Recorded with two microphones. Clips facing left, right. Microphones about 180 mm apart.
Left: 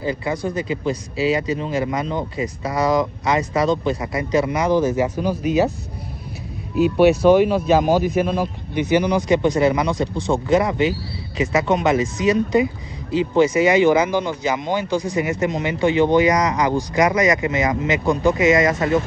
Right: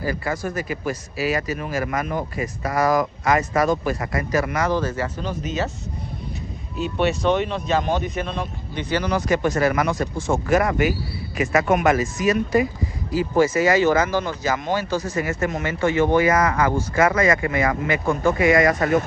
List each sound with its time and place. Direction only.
0.0 s speech: 20° left (ahead or behind)
3.7 s speech: 20° left (ahead or behind)
6.7 s speech: 10° left (ahead or behind)